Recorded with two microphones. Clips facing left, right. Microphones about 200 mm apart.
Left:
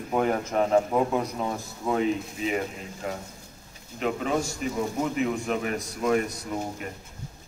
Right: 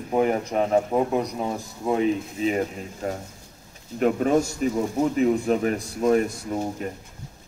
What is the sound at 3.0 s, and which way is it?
A man's voice, 40° right (ahead or behind).